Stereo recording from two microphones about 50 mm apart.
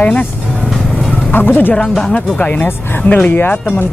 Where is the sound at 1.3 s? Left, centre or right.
Left.